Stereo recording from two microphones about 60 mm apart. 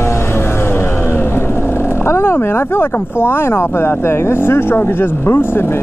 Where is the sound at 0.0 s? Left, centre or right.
Left.